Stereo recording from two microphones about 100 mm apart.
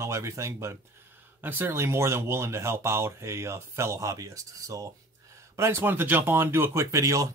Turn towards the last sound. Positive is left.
turn(degrees=-30)  # may be behind; listen again after turning